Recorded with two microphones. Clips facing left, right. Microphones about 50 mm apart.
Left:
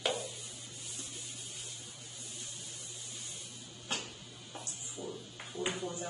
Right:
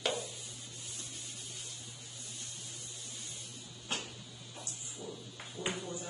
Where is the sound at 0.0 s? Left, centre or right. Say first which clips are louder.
Left 1 dB; centre.